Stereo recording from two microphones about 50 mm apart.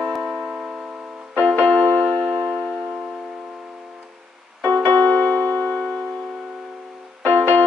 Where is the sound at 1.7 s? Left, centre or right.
Centre.